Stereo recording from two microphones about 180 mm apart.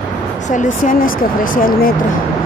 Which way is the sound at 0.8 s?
50° left (ahead or behind).